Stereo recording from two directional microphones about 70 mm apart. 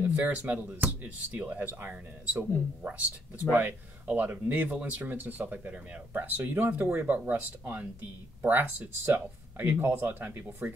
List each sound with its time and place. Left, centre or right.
0.0 s speech: right
8.5 s speech: right